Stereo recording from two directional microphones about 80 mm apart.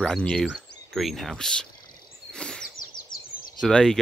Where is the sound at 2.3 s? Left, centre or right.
Centre.